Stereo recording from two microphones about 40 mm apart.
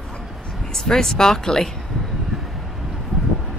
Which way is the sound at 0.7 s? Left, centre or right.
Centre.